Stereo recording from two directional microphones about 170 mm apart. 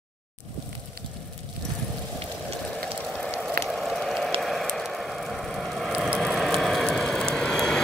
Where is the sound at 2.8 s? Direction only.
5° left (ahead or behind).